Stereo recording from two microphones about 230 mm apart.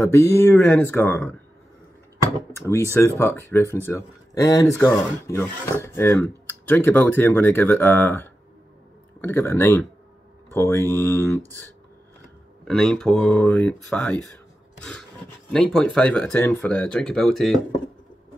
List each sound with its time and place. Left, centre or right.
0.0 s speech: centre
2.5 s speech: centre
12.6 s speech: centre
14.8 s filing: centre
15.5 s speech: centre